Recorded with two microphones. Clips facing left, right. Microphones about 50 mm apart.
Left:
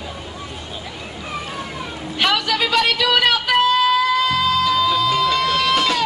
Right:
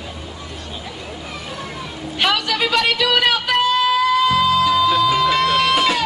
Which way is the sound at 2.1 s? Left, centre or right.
Centre.